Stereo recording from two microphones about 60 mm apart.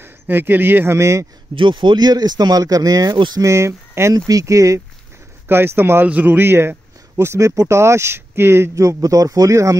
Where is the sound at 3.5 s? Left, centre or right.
Right.